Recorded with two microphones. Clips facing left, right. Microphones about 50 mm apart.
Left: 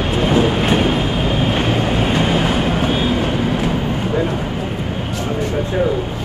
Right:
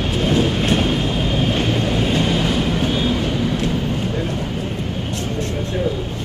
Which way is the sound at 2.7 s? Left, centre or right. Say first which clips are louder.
Left 2 dB; left.